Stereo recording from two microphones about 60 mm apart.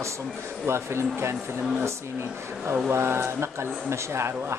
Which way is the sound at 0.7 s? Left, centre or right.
Right.